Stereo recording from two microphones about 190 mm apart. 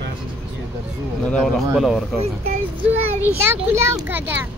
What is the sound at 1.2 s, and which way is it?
Speech, 5° left (ahead or behind).